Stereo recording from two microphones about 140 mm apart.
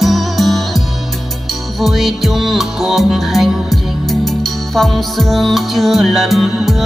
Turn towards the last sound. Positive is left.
turn(degrees=0)  # may be behind; listen again after turning